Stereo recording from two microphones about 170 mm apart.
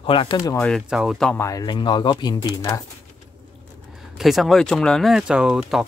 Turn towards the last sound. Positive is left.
turn(degrees=-5)  # may be behind; listen again after turning